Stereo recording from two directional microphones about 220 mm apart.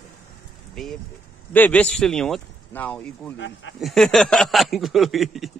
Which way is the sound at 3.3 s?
55° left (ahead or behind).